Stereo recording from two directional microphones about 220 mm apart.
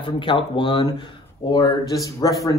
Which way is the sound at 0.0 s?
20° left (ahead or behind).